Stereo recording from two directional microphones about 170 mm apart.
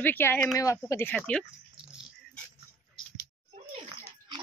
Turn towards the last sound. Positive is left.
turn(degrees=-40)  # may be behind; listen again after turning